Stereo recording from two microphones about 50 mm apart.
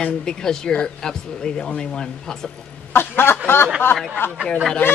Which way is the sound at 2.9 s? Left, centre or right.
Left.